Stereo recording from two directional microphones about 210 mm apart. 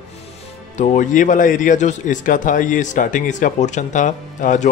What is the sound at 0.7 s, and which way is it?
Speech, 35° left (ahead or behind).